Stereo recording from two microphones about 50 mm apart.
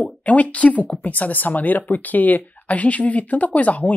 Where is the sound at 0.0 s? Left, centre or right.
Left.